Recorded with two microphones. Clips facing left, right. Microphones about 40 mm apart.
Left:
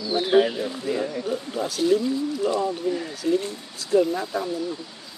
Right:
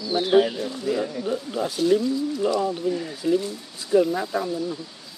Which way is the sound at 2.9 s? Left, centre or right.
Centre.